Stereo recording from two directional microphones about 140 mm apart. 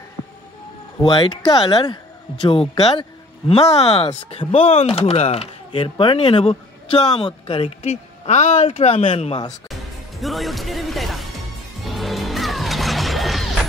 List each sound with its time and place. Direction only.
1.0 s speech: 35° left (ahead or behind)
7.9 s speech: 55° left (ahead or behind); by 9.5 s 40° left (ahead or behind)
10.2 s speech: centre (ahead or behind)
11.8 s music: centre (ahead or behind)